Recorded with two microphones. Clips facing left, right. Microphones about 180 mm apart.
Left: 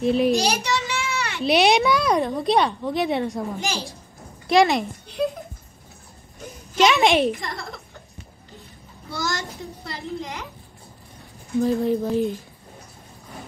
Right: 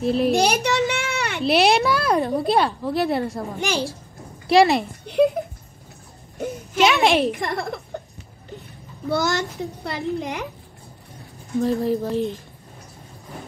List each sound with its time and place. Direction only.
0.0 s a woman's voice: centre (ahead or behind)
0.3 s a sound: 60° right (ahead or behind)
1.4 s a woman's voice: centre (ahead or behind)
3.5 s a child's voice: 60° right (ahead or behind)
4.5 s a woman's voice: centre (ahead or behind)
6.3 s a sound: 60° right (ahead or behind)
6.8 s a woman's voice: centre (ahead or behind)
7.3 s a child's voice: 60° right (ahead or behind)
9.1 s a child's voice: 60° right (ahead or behind)
11.6 s a woman's voice: centre (ahead or behind)